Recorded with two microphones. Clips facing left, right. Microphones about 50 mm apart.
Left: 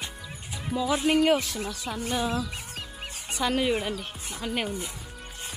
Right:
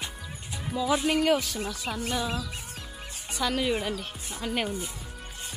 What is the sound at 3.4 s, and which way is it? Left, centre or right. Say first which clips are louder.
Speech: left 2 dB; centre.